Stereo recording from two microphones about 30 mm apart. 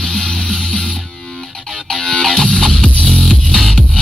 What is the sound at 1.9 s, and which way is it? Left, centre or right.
Music, centre.